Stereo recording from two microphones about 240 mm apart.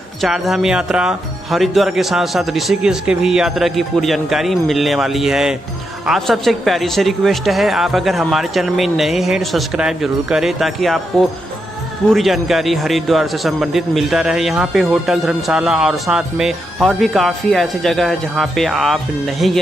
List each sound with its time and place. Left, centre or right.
0.2 s a man's voice: centre